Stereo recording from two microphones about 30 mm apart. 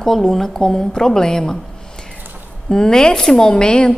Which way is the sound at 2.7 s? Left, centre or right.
Left.